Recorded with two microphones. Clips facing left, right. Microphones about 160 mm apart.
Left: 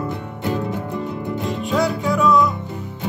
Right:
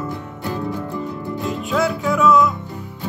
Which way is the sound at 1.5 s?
Centre (ahead or behind).